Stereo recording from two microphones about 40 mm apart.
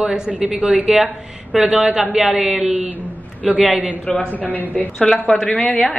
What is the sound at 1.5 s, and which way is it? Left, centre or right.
A man's voice, centre.